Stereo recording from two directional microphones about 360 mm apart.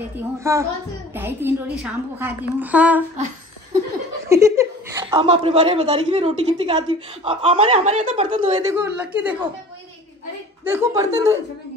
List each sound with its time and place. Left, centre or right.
0.2 s a woman's voice: centre
4.3 s speech: centre
10.6 s speech: centre